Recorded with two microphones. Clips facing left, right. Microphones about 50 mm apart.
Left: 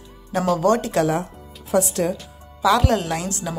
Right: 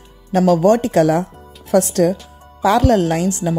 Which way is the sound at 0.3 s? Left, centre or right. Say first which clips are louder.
Right 7 dB; right.